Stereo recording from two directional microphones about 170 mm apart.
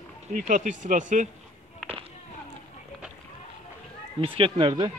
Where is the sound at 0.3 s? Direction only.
50° right (ahead or behind).